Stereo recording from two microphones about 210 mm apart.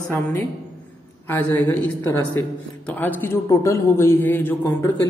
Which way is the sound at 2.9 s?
10° left (ahead or behind).